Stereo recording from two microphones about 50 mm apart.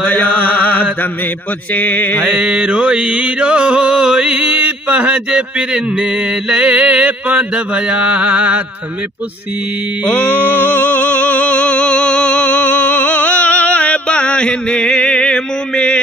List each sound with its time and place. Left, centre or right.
0.1 s chant: left
1.7 s mantra: left
2.2 s mantra: centre
10.0 s music: left